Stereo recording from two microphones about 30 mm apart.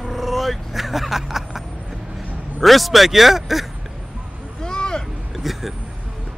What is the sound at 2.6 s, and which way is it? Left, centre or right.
Speech, centre.